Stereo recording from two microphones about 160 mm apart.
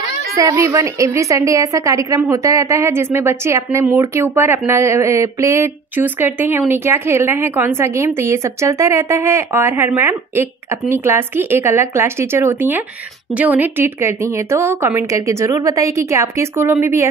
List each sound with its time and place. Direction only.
0.4 s a woman's voice: 20° right (ahead or behind)